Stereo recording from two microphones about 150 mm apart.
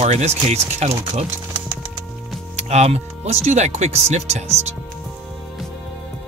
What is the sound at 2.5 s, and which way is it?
Speech, 45° right (ahead or behind).